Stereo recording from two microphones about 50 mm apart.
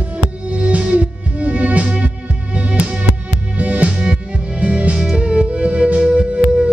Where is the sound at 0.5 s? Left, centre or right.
Right.